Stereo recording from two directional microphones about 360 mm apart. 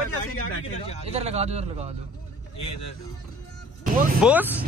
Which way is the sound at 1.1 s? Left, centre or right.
Centre.